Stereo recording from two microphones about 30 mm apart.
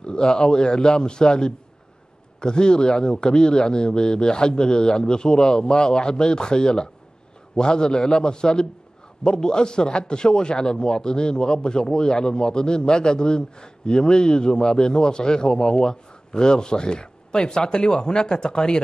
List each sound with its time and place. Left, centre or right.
0.0 s a man's voice: left